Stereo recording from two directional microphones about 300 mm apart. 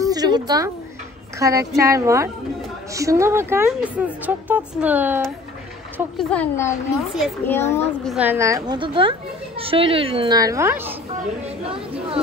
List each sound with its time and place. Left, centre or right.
0.0 s a sound: centre
1.4 s a woman's voice: centre
11.7 s speech: centre